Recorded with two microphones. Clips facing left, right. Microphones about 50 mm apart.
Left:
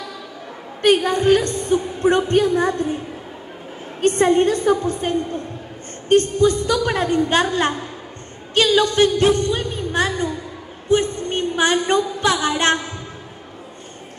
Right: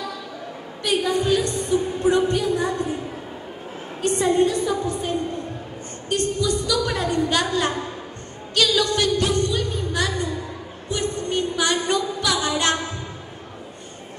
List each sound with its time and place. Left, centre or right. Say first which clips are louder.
0.8 s a woman's voice: left 6 dB; left
4.0 s a woman's voice: left 4 dB; left
10.9 s a sound: left 6 dB; left